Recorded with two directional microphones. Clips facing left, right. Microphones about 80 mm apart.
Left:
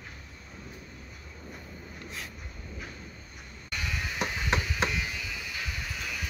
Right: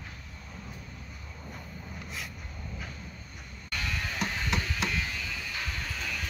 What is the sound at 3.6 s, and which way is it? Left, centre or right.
Music, centre.